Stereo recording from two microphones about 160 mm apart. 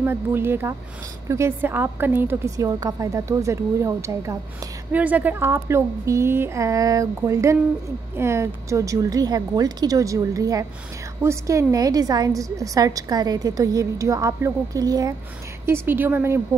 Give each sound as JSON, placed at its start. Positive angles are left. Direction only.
{"t": 0.0, "sound": "a woman's voice", "side_deg": -15}